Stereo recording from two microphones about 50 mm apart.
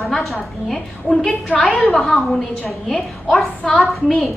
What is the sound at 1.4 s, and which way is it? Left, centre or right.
Speech, left.